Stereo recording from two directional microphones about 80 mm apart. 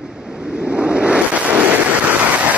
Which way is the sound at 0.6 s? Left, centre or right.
Centre.